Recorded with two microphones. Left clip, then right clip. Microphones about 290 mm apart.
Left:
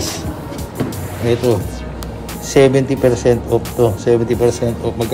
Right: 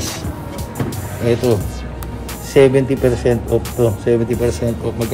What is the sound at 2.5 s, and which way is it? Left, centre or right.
Speech, centre.